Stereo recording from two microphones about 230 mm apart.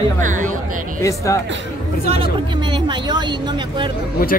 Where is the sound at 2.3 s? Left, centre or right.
Right.